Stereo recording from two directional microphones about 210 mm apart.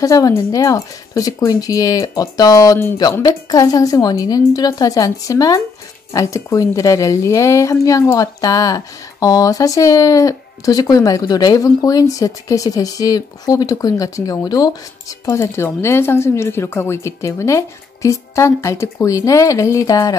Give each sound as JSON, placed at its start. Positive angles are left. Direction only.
{"t": 0.0, "sound": "a woman's voice", "side_deg": 15}